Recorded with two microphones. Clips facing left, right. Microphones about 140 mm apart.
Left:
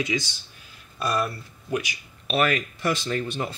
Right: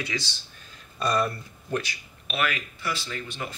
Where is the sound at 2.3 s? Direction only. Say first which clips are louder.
Left 6 dB; 40° left (ahead or behind).